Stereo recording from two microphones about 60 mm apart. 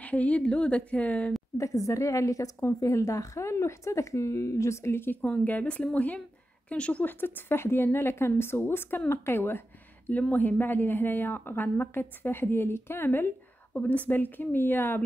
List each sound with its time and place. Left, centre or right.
0.0 s a woman's voice: left
1.6 s a woman's voice: left
5.2 s a woman's voice: left
7.2 s a woman's voice: left
13.7 s a woman's voice: left